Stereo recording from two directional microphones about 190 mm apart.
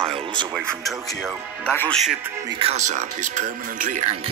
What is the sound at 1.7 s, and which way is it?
Speech, 5° left (ahead or behind).